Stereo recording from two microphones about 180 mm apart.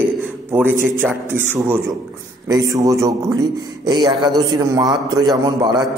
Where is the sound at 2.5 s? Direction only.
20° right (ahead or behind).